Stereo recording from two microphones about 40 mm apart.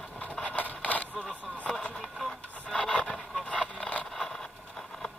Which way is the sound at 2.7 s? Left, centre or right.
Left.